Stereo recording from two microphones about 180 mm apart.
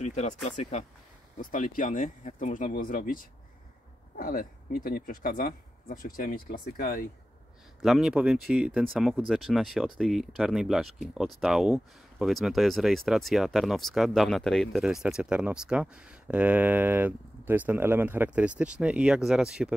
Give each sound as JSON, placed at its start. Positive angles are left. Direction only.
{"t": 0.0, "sound": "speech", "side_deg": 40}
{"t": 7.8, "sound": "speech", "side_deg": 0}